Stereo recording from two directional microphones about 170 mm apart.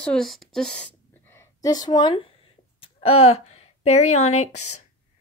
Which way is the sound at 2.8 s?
35° left (ahead or behind).